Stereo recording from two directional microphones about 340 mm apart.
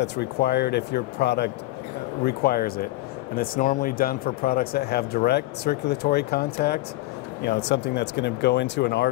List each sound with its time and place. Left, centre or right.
0.0 s speech: left